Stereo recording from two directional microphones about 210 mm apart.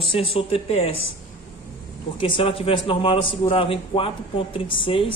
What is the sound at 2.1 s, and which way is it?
Speech, 25° left (ahead or behind).